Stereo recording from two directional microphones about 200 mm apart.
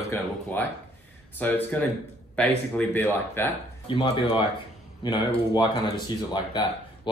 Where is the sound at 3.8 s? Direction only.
25° left (ahead or behind).